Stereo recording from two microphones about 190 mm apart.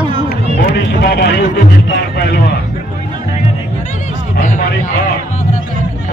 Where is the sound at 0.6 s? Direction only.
60° left (ahead or behind).